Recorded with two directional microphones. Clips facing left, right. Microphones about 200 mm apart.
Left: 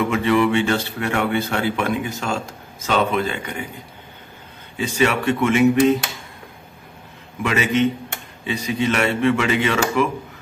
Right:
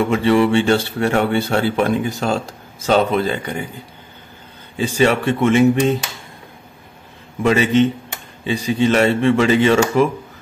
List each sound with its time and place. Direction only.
0.1 s speech: 30° right (ahead or behind)
4.7 s speech: 30° right (ahead or behind)
7.4 s speech: 30° right (ahead or behind)